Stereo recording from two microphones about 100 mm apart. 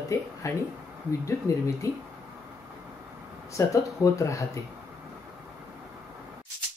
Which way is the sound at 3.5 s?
30° left (ahead or behind).